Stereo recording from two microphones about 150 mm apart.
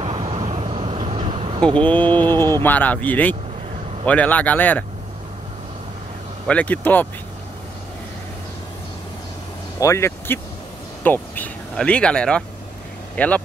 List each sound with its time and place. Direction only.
0.0 s vehicle: 35° right (ahead or behind)
1.8 s speech: 10° left (ahead or behind)
6.4 s speech: 10° left (ahead or behind)
9.8 s speech: 20° left (ahead or behind)